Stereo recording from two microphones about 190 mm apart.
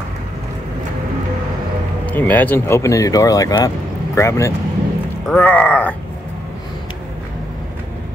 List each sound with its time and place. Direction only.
2.0 s speech: 10° left (ahead or behind)